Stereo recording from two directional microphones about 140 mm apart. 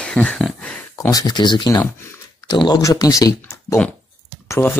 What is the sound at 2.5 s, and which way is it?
Speech, 30° left (ahead or behind).